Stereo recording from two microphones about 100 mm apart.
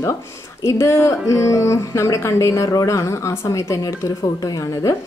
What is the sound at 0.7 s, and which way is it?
Speech, 25° left (ahead or behind).